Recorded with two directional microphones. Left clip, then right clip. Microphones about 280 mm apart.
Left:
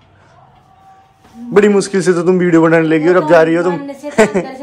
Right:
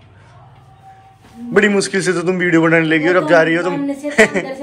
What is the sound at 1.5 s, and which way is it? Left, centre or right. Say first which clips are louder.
A man's voice: left 3 dB; centre.